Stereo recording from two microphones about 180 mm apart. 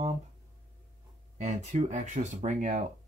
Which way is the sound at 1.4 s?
40° right (ahead or behind).